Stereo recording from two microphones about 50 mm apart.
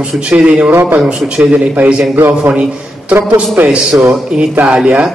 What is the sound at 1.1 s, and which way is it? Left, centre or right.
Speech, centre.